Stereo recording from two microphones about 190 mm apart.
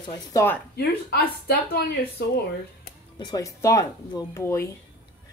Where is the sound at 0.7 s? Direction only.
55° left (ahead or behind).